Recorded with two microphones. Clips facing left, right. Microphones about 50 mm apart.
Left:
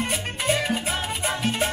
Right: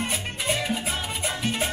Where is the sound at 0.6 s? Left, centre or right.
Centre.